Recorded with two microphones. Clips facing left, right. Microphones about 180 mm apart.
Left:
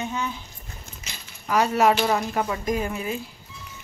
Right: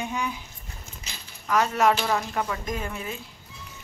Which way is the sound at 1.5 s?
10° left (ahead or behind).